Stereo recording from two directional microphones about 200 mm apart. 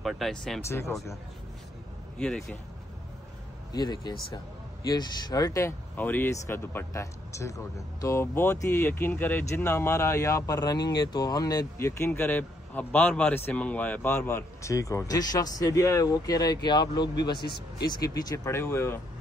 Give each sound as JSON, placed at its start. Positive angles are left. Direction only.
{"t": 0.0, "sound": "speech", "side_deg": 0}
{"t": 0.7, "sound": "speech", "side_deg": 15}
{"t": 2.1, "sound": "speech", "side_deg": 5}
{"t": 3.7, "sound": "speech", "side_deg": 20}